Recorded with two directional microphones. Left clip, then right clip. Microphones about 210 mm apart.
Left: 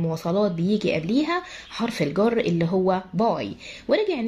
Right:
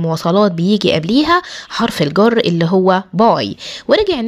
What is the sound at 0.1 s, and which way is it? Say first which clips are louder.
Speech: right 11 dB; 30° right (ahead or behind).